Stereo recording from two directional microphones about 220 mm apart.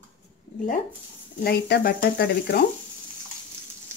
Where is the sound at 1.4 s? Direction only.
45° left (ahead or behind).